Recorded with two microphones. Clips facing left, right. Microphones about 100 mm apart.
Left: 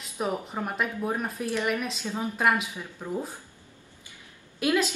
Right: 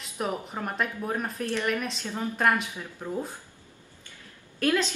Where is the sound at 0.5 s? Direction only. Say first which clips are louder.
Left 1 dB; 5° left (ahead or behind).